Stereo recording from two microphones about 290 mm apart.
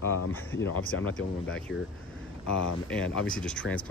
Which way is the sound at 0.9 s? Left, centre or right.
Left.